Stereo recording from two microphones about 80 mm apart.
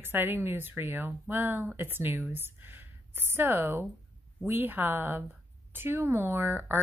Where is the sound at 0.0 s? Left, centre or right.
Right.